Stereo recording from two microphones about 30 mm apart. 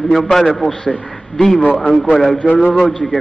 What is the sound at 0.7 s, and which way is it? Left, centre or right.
Speech, left.